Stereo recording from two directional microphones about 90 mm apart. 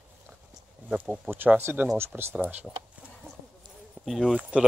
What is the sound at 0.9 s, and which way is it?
Speech, 20° right (ahead or behind).